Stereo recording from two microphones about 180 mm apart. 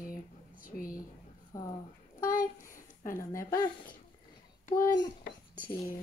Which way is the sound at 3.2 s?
15° left (ahead or behind).